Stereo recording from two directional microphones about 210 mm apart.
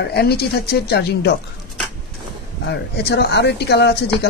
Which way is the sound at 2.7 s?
50° left (ahead or behind).